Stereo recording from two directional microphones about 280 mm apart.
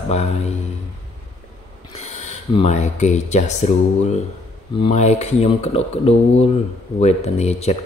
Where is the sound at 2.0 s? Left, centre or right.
Left.